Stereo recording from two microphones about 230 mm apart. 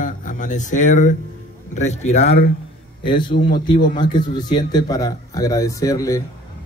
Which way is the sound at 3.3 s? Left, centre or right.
Left.